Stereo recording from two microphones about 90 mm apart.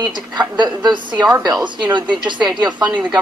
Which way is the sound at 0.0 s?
55° right (ahead or behind).